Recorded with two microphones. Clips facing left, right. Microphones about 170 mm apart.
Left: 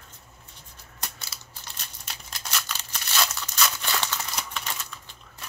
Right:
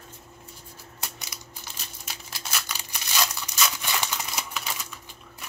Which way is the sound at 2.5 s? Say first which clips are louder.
Left 1 dB; 10° right (ahead or behind).